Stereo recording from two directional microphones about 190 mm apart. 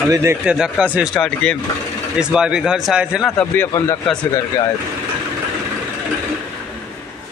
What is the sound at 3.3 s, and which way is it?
Speech, 10° left (ahead or behind).